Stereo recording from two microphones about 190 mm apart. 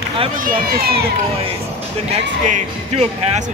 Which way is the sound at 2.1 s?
40° right (ahead or behind).